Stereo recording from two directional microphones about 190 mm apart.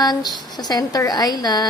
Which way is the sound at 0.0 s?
20° left (ahead or behind).